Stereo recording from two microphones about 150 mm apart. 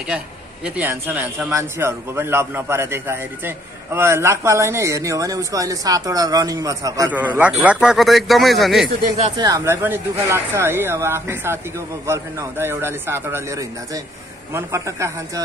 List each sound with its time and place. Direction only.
0.7 s a man's voice: 10° right (ahead or behind)
7.1 s a man's voice: 10° right (ahead or behind)
9.4 s a man's voice: 20° right (ahead or behind)